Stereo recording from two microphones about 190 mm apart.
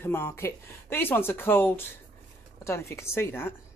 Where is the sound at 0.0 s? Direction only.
10° left (ahead or behind).